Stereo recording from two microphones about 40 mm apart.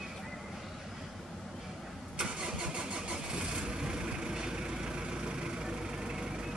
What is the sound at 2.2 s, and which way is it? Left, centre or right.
Vehicle, centre.